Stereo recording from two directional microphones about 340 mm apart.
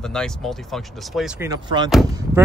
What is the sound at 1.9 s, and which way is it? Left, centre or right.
Speech, centre.